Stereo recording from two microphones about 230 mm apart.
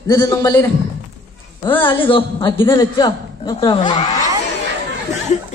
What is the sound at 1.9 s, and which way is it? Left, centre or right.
A man's voice, left.